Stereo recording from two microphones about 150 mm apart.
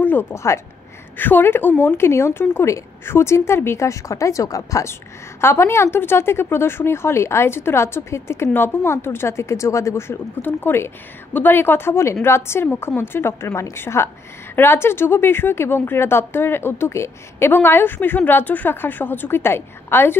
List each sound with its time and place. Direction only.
0.0 s a woman's voice: 15° left (ahead or behind)